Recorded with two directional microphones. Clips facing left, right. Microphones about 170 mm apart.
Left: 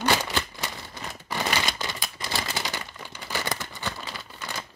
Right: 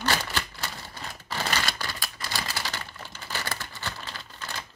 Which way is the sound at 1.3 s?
15° left (ahead or behind).